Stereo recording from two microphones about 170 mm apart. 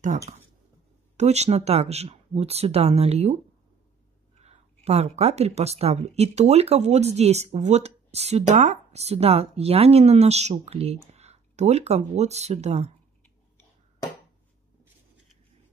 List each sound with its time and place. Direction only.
1.1 s speech: 40° right (ahead or behind)
4.4 s speech: 40° right (ahead or behind)